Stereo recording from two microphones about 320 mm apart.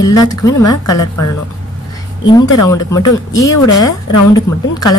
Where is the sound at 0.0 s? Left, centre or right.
Centre.